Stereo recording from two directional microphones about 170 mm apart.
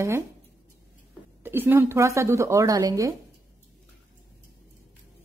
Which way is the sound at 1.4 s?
10° right (ahead or behind).